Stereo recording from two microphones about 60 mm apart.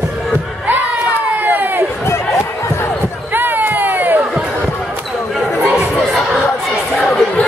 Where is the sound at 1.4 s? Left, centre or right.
Right.